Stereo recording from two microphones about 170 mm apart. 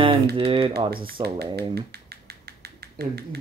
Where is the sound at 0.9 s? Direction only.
65° right (ahead or behind).